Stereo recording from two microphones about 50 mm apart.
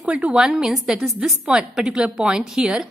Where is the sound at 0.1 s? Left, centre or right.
Right.